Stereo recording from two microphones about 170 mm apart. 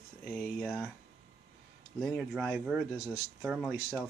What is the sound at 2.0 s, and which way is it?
Speech, 5° left (ahead or behind).